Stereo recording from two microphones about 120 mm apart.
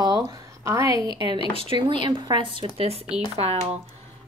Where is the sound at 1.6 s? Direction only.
45° right (ahead or behind).